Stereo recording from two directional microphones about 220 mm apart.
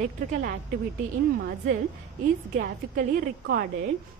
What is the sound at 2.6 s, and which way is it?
A woman's voice, 40° right (ahead or behind).